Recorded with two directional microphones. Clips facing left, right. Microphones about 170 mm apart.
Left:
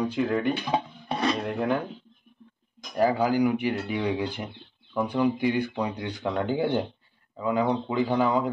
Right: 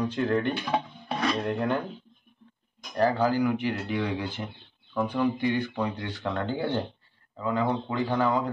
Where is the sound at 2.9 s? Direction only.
10° left (ahead or behind).